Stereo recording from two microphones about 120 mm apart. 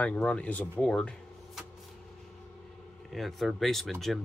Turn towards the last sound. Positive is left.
turn(degrees=0)  # may be behind; listen again after turning